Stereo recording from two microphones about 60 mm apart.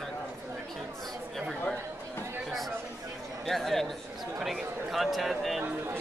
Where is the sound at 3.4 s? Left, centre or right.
Centre.